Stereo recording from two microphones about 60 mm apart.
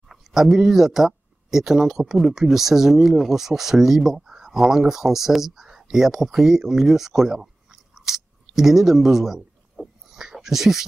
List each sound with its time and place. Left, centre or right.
0.1 s speech: centre